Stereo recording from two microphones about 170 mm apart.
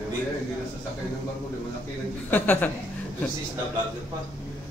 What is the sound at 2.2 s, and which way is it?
Speech, 10° left (ahead or behind).